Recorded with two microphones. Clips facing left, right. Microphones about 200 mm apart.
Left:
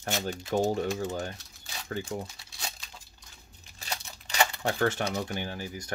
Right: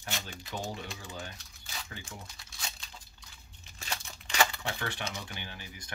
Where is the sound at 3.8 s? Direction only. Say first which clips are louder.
Left 2 dB; 35° left (ahead or behind).